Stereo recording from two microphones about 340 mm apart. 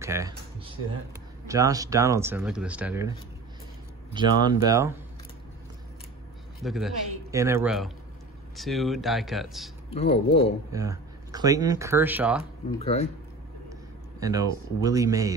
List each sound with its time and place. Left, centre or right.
0.0 s speech: centre
4.1 s speech: centre
6.6 s a man's voice: centre
9.8 s speech: centre
10.7 s speech: centre
12.7 s speech: centre
14.2 s speech: centre